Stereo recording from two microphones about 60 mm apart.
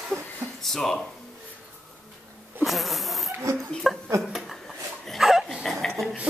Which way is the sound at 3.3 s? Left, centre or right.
Right.